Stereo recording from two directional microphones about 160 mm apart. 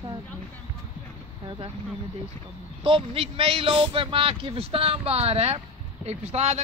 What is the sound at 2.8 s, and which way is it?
A man's voice, 35° right (ahead or behind).